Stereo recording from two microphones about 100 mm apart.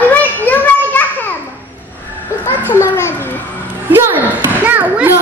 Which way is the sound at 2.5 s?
20° left (ahead or behind).